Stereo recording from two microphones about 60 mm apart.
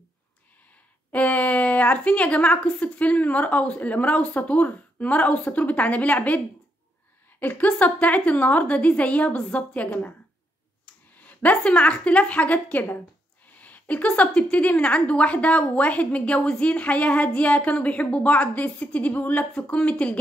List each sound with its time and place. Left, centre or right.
1.1 s a woman's voice: left
11.6 s a woman's voice: centre